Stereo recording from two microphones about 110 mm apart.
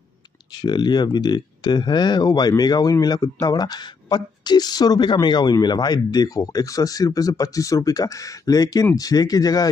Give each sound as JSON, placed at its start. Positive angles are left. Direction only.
{"t": 0.5, "sound": "speech", "side_deg": 40}